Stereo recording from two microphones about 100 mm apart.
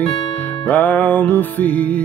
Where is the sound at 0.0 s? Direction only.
15° left (ahead or behind).